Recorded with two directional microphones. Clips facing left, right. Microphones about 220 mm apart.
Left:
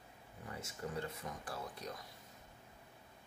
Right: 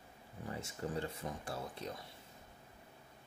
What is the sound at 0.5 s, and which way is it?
Speech, 30° right (ahead or behind).